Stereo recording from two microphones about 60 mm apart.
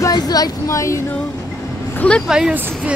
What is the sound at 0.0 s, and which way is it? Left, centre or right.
Speech, left.